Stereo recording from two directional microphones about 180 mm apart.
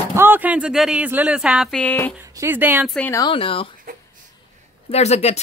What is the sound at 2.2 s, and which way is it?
Speech, 15° right (ahead or behind).